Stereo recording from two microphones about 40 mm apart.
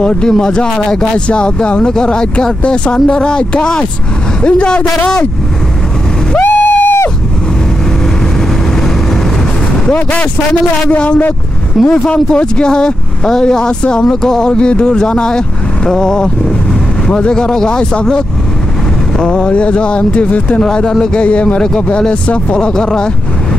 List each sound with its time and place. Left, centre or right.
0.0 s speech: left
6.4 s a sound: left
10.9 s speech: left
11.8 s speech: centre
12.1 s speech: left
17.3 s speech: centre